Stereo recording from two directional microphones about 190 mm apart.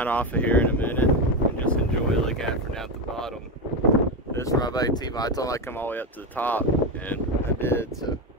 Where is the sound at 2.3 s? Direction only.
5° left (ahead or behind).